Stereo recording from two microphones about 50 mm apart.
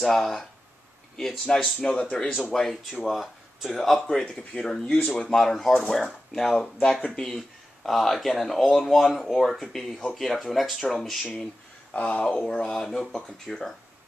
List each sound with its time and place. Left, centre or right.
0.0 s speech: centre
1.9 s speech: centre
2.5 s speech: centre
6.8 s speech: centre
11.9 s speech: left; by 13.7 s centre